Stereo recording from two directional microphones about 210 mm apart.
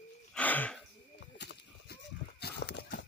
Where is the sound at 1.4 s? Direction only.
55° left (ahead or behind).